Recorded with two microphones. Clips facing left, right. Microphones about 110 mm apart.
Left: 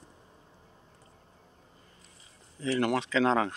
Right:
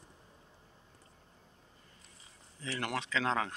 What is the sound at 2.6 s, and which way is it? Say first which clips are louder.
Speech: left 9 dB; 20° left (ahead or behind).